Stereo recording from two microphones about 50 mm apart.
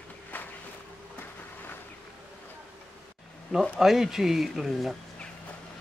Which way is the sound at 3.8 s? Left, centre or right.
Centre.